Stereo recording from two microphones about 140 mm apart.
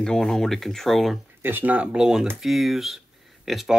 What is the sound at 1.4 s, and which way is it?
Speech, 15° right (ahead or behind).